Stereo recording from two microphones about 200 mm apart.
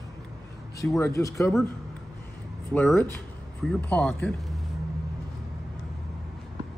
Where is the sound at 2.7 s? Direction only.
5° left (ahead or behind).